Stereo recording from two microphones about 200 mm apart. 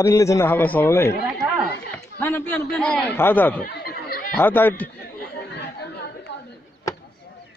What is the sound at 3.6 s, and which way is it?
Chatter, 50° left (ahead or behind).